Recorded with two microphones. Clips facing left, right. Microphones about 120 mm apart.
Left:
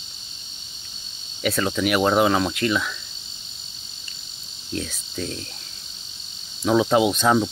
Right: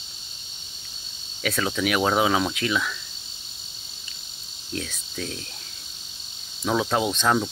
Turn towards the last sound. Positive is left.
turn(degrees=5)  # may be behind; listen again after turning